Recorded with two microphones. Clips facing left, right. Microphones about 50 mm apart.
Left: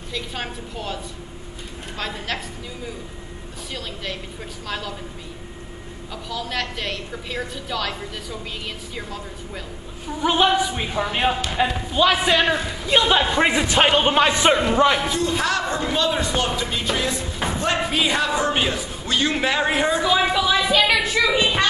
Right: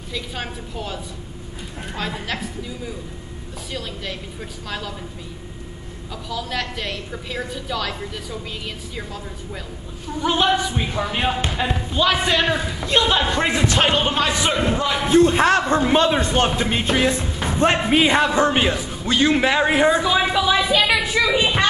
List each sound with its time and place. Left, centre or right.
0.1 s a woman's voice: centre
3.7 s a woman's voice: centre
6.2 s a woman's voice: centre; by 15.0 s left
15.0 s a man's voice: right; by 21.6 s centre